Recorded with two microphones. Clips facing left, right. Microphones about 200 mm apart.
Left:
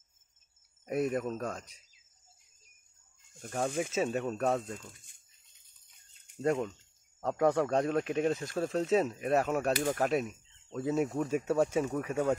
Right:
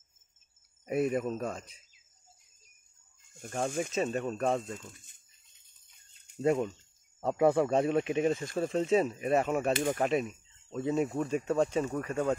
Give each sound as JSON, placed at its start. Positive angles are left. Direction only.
{"t": 0.8, "sound": "speech", "side_deg": -5}
{"t": 3.3, "sound": "speech", "side_deg": 0}
{"t": 4.6, "sound": "speech", "side_deg": -20}
{"t": 6.4, "sound": "speech", "side_deg": -5}
{"t": 9.7, "sound": "speech", "side_deg": -20}
{"t": 9.9, "sound": "speech", "side_deg": 0}